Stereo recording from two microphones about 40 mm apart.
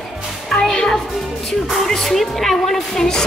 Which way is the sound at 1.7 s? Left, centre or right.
Centre.